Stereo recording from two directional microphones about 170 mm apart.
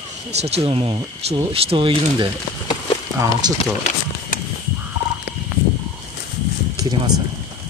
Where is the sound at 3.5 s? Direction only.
45° left (ahead or behind).